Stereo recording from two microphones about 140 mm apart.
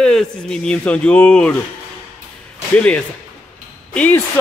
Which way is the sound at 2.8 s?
10° left (ahead or behind).